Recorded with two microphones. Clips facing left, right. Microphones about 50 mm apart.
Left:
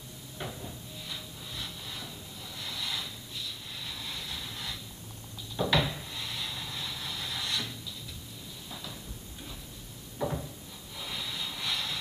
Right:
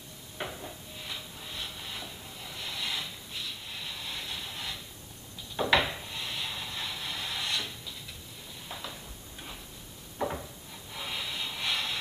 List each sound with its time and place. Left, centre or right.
0.4 s a sound: right
1.0 s train: right
3.3 s a sound: right
3.8 s vehicle: right
5.6 s wood: right
10.1 s cupboard open or close: centre
11.0 s vehicle: right